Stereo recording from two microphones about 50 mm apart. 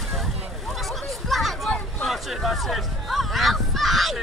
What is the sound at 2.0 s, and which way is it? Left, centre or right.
Fowl, centre.